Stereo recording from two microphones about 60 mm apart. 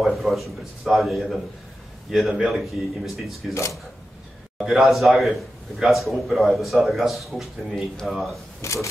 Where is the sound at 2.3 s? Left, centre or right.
Centre.